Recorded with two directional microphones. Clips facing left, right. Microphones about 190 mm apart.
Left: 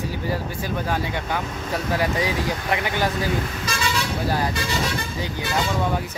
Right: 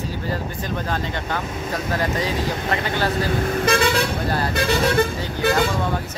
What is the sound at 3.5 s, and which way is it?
Speech, 55° right (ahead or behind).